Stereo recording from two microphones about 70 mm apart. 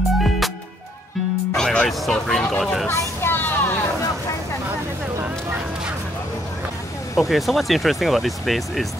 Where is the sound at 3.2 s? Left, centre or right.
Left.